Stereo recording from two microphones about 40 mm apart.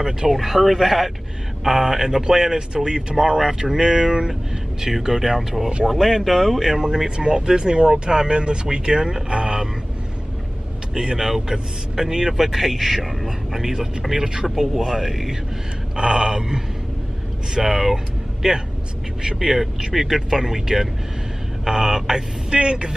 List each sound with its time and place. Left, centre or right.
0.3 s a man's voice: centre
4.3 s speech: centre
11.0 s speech: centre
16.0 s speech: centre
19.6 s speech: centre
22.5 s speech: right